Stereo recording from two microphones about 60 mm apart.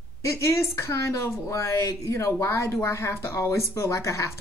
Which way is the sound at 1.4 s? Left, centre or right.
Left.